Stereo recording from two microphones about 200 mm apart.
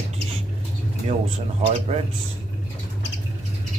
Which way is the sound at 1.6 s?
30° right (ahead or behind).